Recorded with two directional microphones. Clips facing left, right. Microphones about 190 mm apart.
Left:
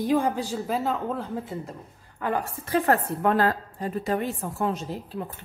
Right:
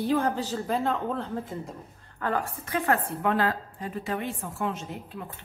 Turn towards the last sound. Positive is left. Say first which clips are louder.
# left 4 dB
turn(degrees=35)  # may be behind; listen again after turning